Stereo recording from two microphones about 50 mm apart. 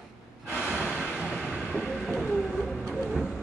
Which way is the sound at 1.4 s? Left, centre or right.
Centre.